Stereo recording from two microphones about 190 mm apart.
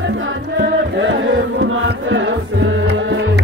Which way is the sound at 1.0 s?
75° right (ahead or behind).